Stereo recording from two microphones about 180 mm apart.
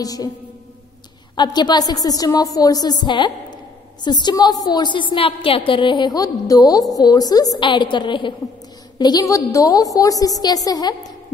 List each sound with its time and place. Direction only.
0.0 s a woman's voice: 20° left (ahead or behind)
1.3 s a woman's voice: 25° left (ahead or behind)